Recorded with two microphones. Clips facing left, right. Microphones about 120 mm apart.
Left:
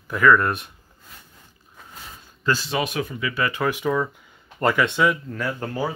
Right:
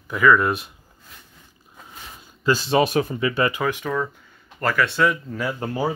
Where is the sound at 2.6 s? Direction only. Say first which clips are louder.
Right 6 dB; 35° right (ahead or behind).